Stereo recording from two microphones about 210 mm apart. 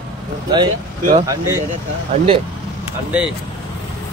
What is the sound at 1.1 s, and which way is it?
Speech, 15° right (ahead or behind).